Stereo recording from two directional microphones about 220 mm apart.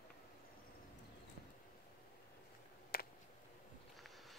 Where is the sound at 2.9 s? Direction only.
45° left (ahead or behind).